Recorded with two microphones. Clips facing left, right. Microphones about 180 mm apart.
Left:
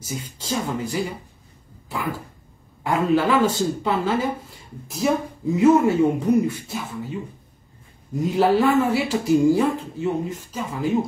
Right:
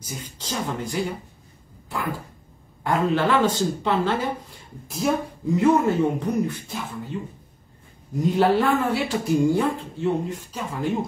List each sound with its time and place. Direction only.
0.0 s speech: 5° left (ahead or behind)
2.8 s speech: 5° left (ahead or behind)
8.2 s speech: centre (ahead or behind)